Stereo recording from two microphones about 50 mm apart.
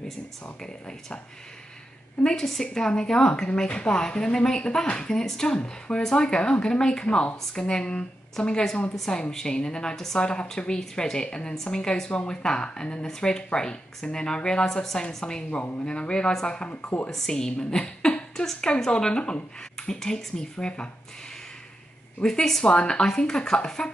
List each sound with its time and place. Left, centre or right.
0.6 s a woman's voice: centre
2.2 s a woman's voice: centre
17.1 s a woman's voice: centre
22.2 s a woman's voice: centre